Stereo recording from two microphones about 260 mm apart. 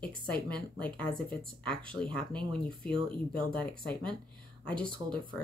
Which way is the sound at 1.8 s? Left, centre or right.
Centre.